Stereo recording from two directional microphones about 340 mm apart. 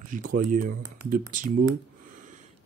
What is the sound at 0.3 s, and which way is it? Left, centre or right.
Speech, right.